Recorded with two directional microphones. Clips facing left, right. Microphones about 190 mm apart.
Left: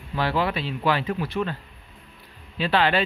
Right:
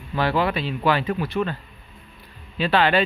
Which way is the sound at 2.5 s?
55° right (ahead or behind).